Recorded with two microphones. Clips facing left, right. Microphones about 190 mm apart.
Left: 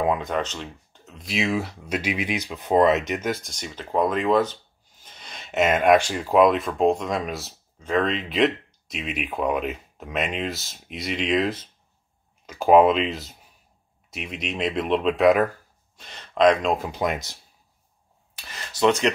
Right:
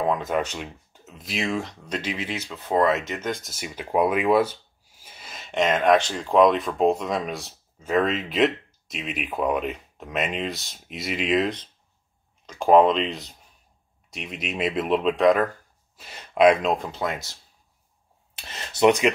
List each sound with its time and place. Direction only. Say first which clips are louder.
0.0 s a sound: left 1 dB; 5° left (ahead or behind)
0.3 s speech: right 1 dB; 10° right (ahead or behind); by 3.3 s 15° left (ahead or behind)
3.3 s speech: left 2 dB; centre (ahead or behind)
16.0 s speech: right 1 dB; 10° right (ahead or behind)
16.7 s speech: left 1 dB; 5° left (ahead or behind)
17.0 s speech: left 3 dB; 15° left (ahead or behind)
18.5 s a sound: right 2 dB; 20° right (ahead or behind)